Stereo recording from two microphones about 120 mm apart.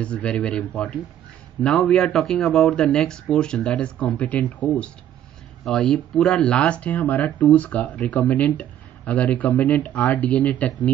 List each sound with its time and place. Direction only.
0.0 s speech: 10° left (ahead or behind)